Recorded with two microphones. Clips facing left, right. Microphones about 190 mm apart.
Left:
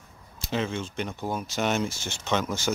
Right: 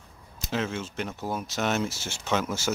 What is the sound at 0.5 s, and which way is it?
Speech, 5° right (ahead or behind).